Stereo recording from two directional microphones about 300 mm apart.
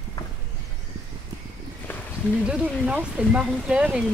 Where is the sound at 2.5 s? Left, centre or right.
Centre.